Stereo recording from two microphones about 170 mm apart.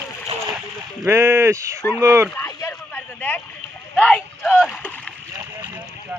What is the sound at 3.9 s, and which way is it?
Rowboat, 5° left (ahead or behind).